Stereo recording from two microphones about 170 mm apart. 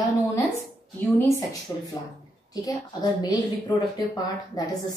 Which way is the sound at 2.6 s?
25° left (ahead or behind).